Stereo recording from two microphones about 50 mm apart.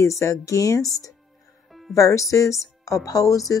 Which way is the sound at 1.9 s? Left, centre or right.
Left.